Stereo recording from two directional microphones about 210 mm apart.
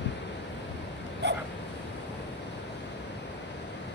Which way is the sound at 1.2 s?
55° right (ahead or behind).